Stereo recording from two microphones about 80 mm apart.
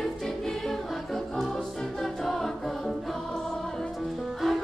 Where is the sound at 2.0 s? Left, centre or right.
Centre.